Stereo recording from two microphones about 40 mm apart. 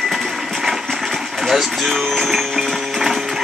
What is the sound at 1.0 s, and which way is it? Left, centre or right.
Speech, centre.